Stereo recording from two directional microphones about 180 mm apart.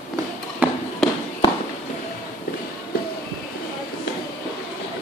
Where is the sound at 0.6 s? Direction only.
10° right (ahead or behind).